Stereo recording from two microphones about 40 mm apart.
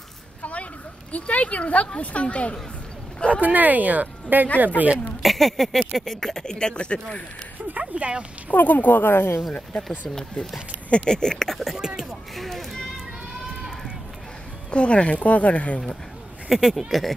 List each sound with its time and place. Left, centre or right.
0.4 s a sound: left
1.1 s speech: left
3.3 s speech: right
5.2 s speech: centre
6.4 s speech: centre
7.9 s speech: right
8.5 s speech: left
10.9 s speech: centre
11.5 s speech: centre
12.4 s a sound: centre
14.7 s speech: left
16.4 s speech: centre